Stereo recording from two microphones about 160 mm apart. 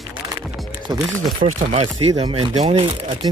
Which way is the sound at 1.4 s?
45° right (ahead or behind).